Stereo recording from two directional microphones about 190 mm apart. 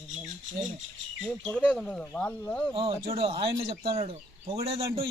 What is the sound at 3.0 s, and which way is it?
A man's voice, 30° right (ahead or behind).